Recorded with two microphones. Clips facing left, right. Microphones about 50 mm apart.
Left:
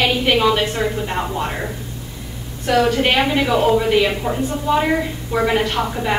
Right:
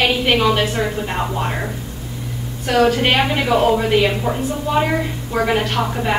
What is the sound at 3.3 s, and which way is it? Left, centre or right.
A woman's voice, centre.